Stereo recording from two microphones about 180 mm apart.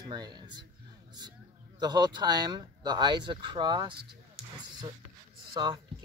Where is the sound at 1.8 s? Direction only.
25° right (ahead or behind).